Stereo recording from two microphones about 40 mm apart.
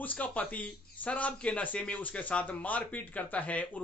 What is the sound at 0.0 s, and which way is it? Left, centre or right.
Speech, left.